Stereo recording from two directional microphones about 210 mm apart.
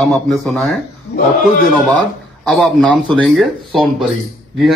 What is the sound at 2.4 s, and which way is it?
Speech, centre (ahead or behind).